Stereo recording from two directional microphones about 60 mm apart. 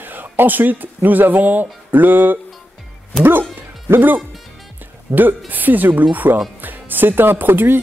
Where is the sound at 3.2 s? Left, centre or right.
Right.